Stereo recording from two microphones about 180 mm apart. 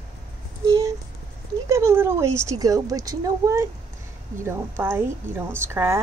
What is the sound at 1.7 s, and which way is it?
Speech, 15° right (ahead or behind).